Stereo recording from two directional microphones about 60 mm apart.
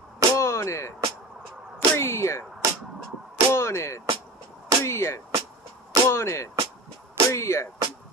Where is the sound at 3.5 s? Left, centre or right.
Left.